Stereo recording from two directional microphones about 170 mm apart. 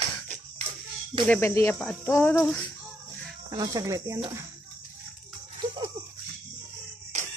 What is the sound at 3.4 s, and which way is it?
Speech, 20° right (ahead or behind).